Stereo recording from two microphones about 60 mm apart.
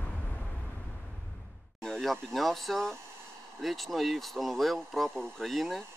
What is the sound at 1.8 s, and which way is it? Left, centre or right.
Speech, centre.